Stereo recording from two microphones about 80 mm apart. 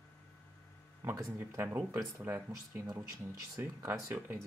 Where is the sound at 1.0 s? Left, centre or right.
Right.